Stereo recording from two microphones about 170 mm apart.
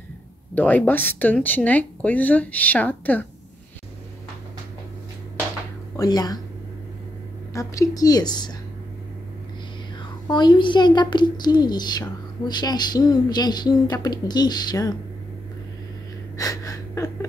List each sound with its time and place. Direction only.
0.6 s speech: 10° left (ahead or behind)
5.9 s a woman's voice: 20° left (ahead or behind)
7.5 s a woman's voice: 20° left (ahead or behind)
10.3 s a woman's voice: 25° left (ahead or behind)
16.3 s gasp: 20° left (ahead or behind)